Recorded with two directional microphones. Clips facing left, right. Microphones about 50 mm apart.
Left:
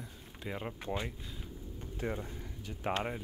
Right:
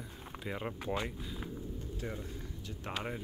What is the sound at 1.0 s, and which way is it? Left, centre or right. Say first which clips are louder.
Speech: right 2 dB; centre.